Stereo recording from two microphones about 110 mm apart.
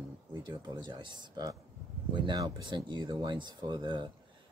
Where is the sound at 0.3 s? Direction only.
35° right (ahead or behind).